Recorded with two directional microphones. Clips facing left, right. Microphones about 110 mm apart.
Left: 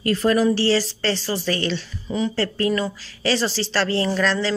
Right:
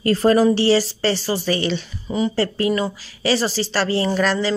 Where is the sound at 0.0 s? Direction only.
35° right (ahead or behind).